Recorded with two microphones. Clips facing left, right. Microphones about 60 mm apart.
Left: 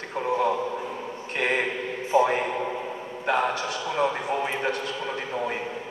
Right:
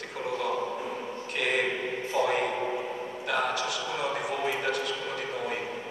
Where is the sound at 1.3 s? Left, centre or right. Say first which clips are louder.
Left 3 dB; left.